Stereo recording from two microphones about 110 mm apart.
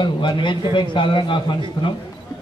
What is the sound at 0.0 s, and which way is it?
A man's voice, 45° left (ahead or behind).